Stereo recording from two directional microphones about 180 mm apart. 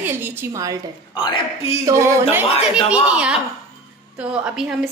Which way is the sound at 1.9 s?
15° right (ahead or behind).